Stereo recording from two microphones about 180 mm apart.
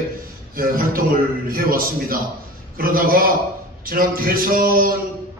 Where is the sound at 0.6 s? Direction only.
55° right (ahead or behind).